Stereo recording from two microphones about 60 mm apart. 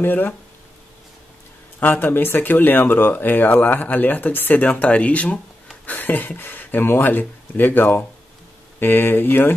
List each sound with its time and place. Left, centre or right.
0.0 s speech: left
1.8 s speech: left